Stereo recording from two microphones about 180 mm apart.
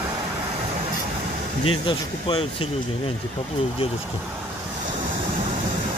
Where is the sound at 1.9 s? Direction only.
30° left (ahead or behind).